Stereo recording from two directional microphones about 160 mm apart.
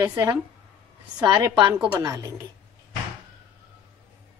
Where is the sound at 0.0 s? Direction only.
20° right (ahead or behind).